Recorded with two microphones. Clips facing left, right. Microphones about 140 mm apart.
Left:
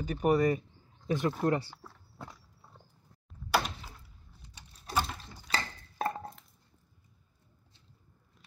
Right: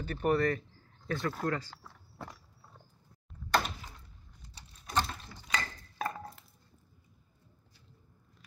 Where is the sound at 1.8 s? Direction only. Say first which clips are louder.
Right 1 dB; centre (ahead or behind).